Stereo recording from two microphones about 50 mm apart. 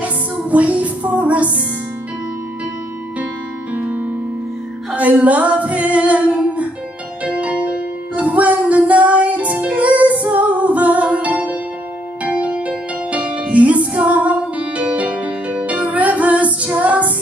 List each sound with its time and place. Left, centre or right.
0.0 s music: right
3.7 s music: right
4.9 s singing: right
7.2 s music: right